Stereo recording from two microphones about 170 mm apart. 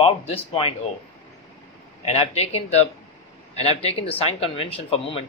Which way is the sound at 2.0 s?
35° left (ahead or behind).